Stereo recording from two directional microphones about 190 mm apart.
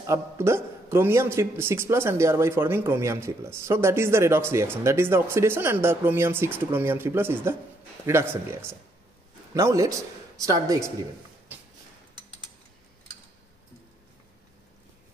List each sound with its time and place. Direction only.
0.0 s a man's voice: 15° right (ahead or behind)